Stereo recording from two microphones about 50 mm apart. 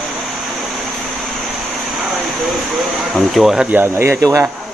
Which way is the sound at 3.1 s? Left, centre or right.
Centre.